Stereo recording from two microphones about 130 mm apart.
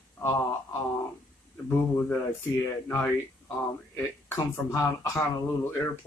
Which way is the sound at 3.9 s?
20° left (ahead or behind).